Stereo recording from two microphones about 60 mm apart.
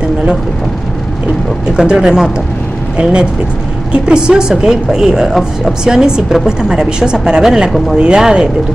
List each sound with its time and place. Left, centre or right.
1.8 s speech: centre